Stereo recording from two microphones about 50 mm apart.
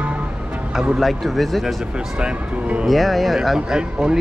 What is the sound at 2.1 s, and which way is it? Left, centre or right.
Speech, centre.